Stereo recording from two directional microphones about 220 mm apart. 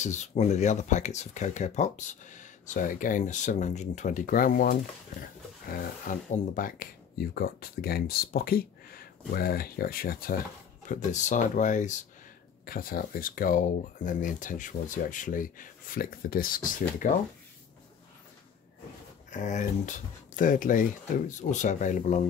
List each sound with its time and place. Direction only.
0.0 s speech: 30° left (ahead or behind)
19.3 s speech: 35° left (ahead or behind)